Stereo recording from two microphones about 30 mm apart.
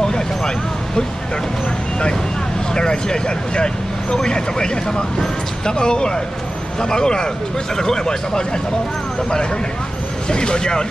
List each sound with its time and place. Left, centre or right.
0.0 s vehicle: left
2.7 s speech: left
10.2 s speech: left